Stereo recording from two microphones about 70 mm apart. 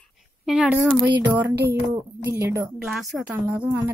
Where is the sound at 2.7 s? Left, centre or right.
Centre.